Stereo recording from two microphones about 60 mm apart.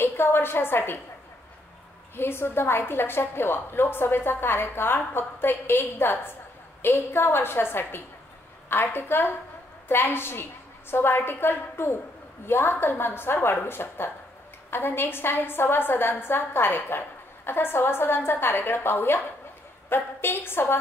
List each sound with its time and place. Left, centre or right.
0.0 s a woman's voice: left
2.1 s a woman's voice: left